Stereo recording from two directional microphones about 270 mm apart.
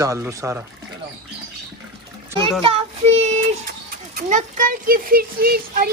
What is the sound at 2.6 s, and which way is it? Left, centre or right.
A man's voice, right.